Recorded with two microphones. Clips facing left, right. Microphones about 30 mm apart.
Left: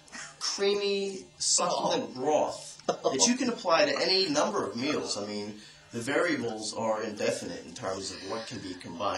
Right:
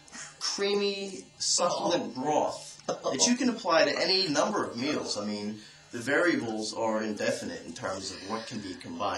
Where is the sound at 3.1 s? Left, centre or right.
Centre.